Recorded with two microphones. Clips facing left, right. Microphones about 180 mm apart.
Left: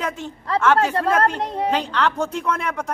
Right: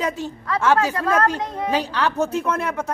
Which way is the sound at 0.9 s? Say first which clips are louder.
Left 1 dB; 30° left (ahead or behind).